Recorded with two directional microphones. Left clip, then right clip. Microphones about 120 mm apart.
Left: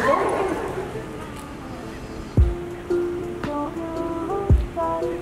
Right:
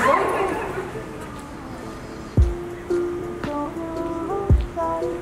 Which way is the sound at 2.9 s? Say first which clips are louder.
Even; centre (ahead or behind).